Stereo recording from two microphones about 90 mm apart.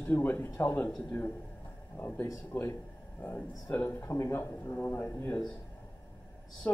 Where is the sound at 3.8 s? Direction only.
30° left (ahead or behind).